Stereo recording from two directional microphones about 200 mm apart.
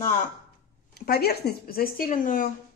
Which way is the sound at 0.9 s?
50° left (ahead or behind).